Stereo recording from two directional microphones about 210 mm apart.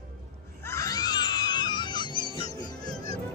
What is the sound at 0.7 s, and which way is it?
Music, 15° left (ahead or behind).